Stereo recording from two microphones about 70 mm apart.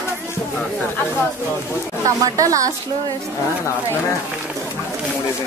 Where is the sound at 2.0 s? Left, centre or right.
Right.